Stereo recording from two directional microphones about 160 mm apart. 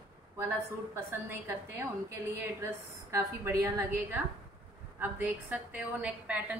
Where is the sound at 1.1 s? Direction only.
15° right (ahead or behind).